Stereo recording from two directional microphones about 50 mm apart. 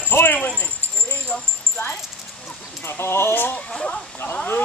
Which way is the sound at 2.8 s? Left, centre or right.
Left.